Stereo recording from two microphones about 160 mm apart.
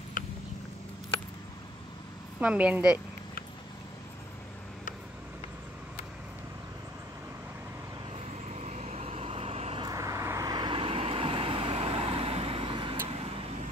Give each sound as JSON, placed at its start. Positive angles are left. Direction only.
{"t": 2.4, "sound": "a woman's voice", "side_deg": -10}
{"t": 8.5, "sound": "vehicle", "side_deg": -45}
{"t": 9.8, "sound": "vehicle", "side_deg": -20}